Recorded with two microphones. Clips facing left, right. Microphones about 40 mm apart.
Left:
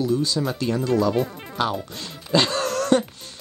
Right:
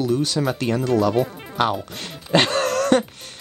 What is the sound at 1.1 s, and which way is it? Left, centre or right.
Speech, centre.